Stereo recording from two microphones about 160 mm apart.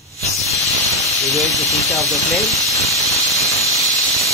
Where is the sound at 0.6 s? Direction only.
20° right (ahead or behind).